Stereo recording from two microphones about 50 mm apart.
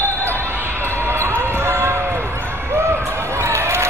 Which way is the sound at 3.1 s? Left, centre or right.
Right.